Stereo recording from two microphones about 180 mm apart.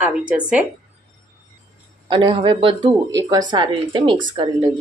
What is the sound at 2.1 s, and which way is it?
Speech, 25° right (ahead or behind).